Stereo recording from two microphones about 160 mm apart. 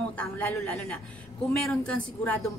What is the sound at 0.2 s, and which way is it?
A woman's voice, 10° left (ahead or behind).